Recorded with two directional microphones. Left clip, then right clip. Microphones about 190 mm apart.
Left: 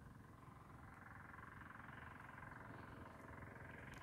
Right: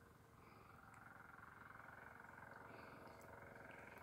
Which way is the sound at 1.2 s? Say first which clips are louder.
Left 2 dB; 45° right (ahead or behind).